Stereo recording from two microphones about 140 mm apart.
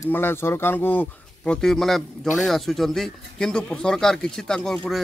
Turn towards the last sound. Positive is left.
turn(degrees=0)  # may be behind; listen again after turning